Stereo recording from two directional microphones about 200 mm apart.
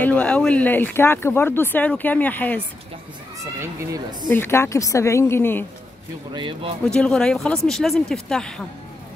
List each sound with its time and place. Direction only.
0.0 s speech: 5° left (ahead or behind)
3.6 s speech: 15° right (ahead or behind)
4.3 s speech: 10° left (ahead or behind)
6.3 s speech: 25° right (ahead or behind)
6.9 s speech: 5° left (ahead or behind)